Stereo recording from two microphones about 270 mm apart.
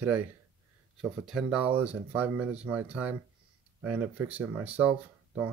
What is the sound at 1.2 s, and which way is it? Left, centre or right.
Speech, centre.